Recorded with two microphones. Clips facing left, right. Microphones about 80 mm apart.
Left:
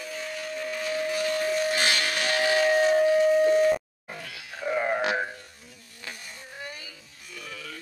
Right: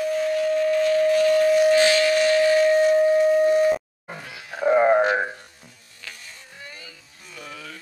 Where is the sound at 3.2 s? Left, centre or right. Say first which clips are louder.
Right 3 dB; centre.